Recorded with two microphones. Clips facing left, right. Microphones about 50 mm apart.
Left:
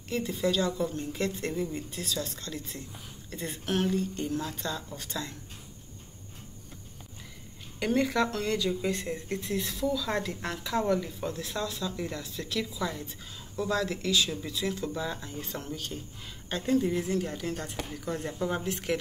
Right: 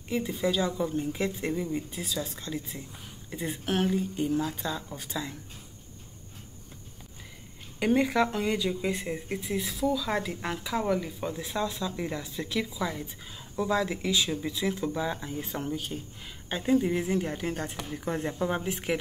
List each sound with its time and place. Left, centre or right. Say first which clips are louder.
0.1 s speech: right 1 dB; centre
7.8 s a woman's voice: right 2 dB; centre
18.4 s speech: right 1 dB; centre